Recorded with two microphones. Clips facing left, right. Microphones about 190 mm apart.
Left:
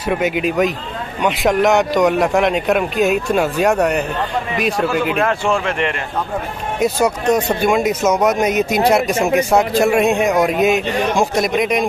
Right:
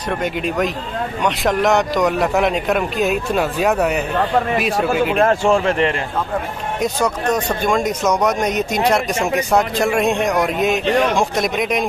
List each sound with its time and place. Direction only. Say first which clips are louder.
0.1 s a man's voice: left 4 dB; 5° left (ahead or behind)
5.1 s speech: right 3 dB; 40° right (ahead or behind)
6.8 s a man's voice: left 3 dB; 10° left (ahead or behind)